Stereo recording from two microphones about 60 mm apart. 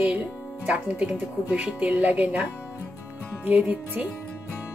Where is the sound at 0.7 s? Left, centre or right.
Right.